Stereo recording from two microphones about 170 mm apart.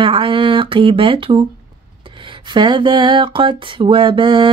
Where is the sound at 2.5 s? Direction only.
30° right (ahead or behind).